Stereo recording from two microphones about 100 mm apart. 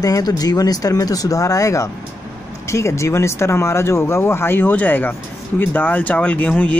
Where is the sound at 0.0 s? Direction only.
35° left (ahead or behind).